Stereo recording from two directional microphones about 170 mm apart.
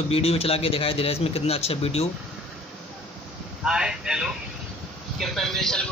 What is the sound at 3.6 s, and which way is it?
Wind noise, 5° right (ahead or behind).